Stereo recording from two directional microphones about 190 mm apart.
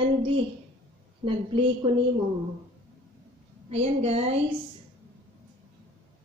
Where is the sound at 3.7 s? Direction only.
30° right (ahead or behind).